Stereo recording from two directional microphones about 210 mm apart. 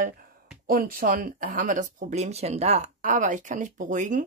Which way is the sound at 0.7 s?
45° right (ahead or behind).